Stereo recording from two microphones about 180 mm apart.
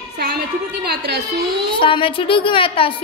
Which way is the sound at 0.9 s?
65° right (ahead or behind).